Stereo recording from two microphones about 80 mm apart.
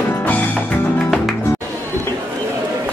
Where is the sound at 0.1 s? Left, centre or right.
Left.